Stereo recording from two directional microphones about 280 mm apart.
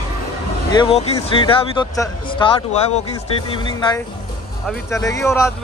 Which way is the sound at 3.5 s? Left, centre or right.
Centre.